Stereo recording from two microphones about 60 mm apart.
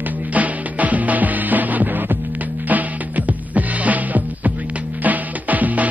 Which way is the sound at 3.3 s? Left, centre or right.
Right.